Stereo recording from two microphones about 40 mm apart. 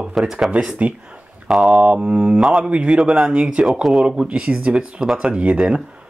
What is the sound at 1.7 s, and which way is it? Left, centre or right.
Speech, right.